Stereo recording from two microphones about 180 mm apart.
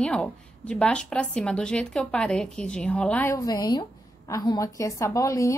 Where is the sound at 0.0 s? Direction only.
5° left (ahead or behind).